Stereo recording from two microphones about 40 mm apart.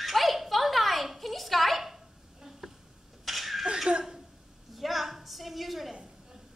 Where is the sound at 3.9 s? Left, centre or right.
Right.